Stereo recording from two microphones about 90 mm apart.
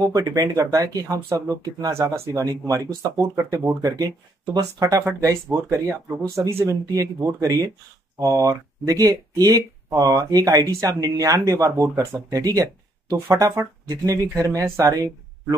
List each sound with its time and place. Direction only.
0.1 s speech: 35° right (ahead or behind)